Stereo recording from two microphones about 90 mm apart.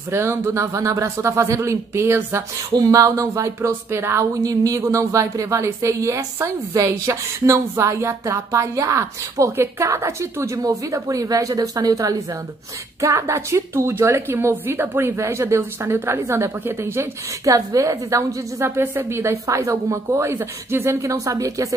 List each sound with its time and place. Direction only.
0.1 s speech: 30° right (ahead or behind)
2.7 s a woman's voice: 40° right (ahead or behind)
17.5 s speech: 40° right (ahead or behind)